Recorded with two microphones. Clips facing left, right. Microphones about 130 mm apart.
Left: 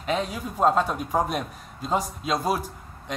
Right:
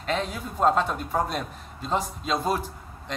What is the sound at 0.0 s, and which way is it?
Speech, 10° left (ahead or behind).